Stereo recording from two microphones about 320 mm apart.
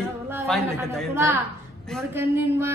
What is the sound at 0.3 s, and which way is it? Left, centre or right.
A woman's voice, centre.